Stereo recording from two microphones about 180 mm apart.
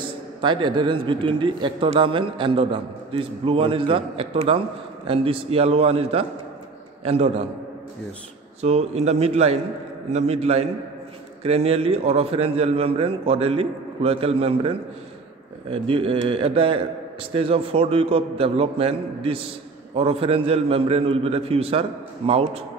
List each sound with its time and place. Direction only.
0.0 s a man's voice: 25° right (ahead or behind)
8.5 s a man's voice: 35° right (ahead or behind)
15.7 s a man's voice: 30° right (ahead or behind)